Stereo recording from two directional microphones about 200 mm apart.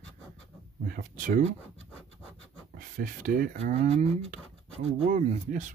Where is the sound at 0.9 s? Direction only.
40° right (ahead or behind).